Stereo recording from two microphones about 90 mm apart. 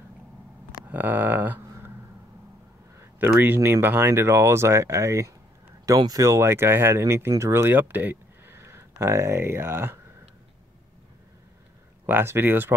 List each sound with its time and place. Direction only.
0.8 s a sound: 20° right (ahead or behind)
3.0 s speech: 20° right (ahead or behind)
5.9 s speech: 45° right (ahead or behind); by 9.9 s 25° right (ahead or behind)
12.1 s speech: 25° right (ahead or behind)